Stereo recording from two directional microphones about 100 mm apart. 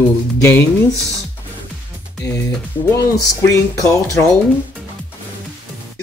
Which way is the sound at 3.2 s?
35° left (ahead or behind).